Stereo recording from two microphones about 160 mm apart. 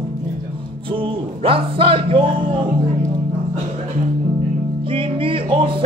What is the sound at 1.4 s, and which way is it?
Music, 35° right (ahead or behind).